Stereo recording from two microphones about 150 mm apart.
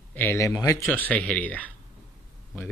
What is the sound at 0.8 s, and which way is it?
Speech, 10° left (ahead or behind).